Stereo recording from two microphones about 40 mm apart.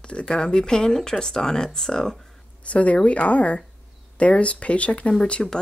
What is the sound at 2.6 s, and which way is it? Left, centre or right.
Speech, left.